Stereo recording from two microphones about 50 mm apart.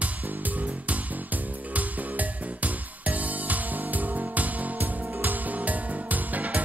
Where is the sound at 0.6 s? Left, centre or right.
Right.